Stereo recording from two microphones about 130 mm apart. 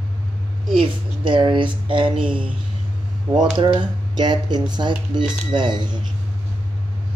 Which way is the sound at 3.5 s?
40° right (ahead or behind).